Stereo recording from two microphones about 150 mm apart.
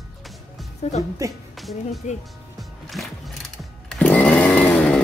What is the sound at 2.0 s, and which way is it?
Speech, 50° left (ahead or behind).